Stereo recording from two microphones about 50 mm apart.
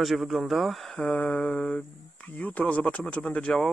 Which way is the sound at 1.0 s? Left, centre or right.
Left.